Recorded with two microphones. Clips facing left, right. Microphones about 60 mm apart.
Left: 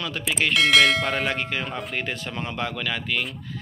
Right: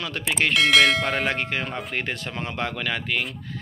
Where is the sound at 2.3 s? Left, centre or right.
Right.